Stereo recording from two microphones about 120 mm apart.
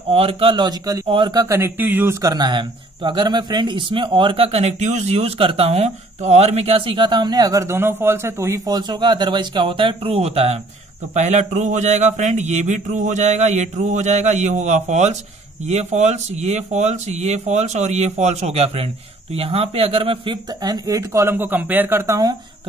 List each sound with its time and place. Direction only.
0.1 s speech: 50° right (ahead or behind); by 1.0 s 35° right (ahead or behind)
1.0 s speech: 45° right (ahead or behind)
1.6 s speech: 15° right (ahead or behind)
2.2 s speech: 35° right (ahead or behind)
10.1 s speech: 55° right (ahead or behind)
11.1 s speech: 75° right (ahead or behind)
14.9 s speech: 70° right (ahead or behind); by 20.3 s 45° right (ahead or behind)
20.6 s speech: 30° right (ahead or behind)